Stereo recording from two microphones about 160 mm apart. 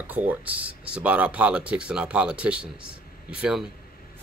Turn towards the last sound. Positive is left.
turn(degrees=-5)  # may be behind; listen again after turning